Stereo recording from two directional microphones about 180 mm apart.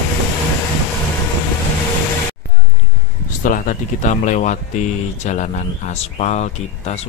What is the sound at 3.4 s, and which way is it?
Speech, 45° left (ahead or behind).